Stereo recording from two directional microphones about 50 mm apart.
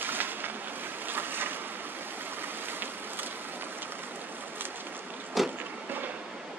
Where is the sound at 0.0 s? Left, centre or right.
Right.